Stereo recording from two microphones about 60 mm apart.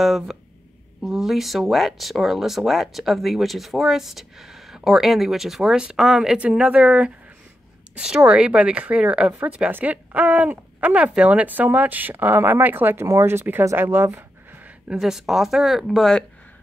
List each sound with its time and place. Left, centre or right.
0.0 s speech: centre; by 13.0 s right
13.0 s speech: right
15.0 s speech: centre